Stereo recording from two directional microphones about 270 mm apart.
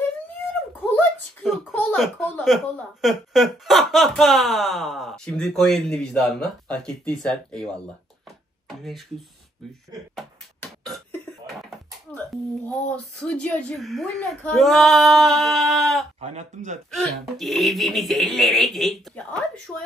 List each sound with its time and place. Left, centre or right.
0.9 s speech: centre
10.1 s beatboxing: centre
12.6 s speech: centre
16.2 s speech: right
16.9 s speech: centre